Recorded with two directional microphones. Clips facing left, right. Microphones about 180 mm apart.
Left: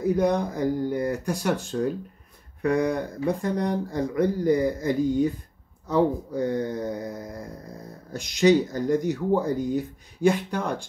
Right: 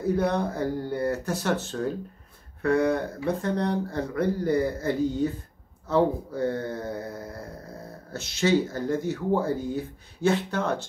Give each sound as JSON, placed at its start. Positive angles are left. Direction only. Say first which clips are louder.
{"t": 0.0, "sound": "speech", "louder": "left 2 dB", "side_deg": 15}